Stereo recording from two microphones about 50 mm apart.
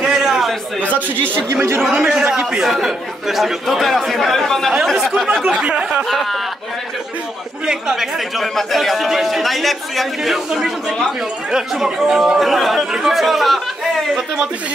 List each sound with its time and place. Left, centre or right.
0.0 s a sound: centre
0.8 s speech: right
1.9 s a man's voice: centre
5.4 s a man's voice: centre
6.0 s speech: centre
7.6 s speech: centre